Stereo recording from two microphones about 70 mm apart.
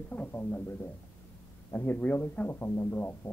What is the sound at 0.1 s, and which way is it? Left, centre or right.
A man's voice, left.